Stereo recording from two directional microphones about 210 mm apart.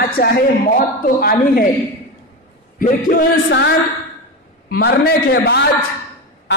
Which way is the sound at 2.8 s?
40° left (ahead or behind).